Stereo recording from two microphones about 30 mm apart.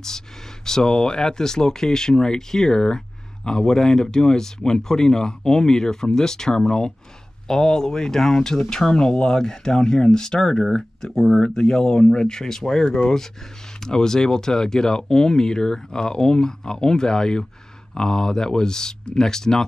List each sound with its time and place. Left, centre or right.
0.7 s speech: left
11.1 s speech: centre
11.4 s speech: left